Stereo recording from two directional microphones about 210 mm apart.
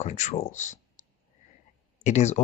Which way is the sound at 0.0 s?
35° left (ahead or behind).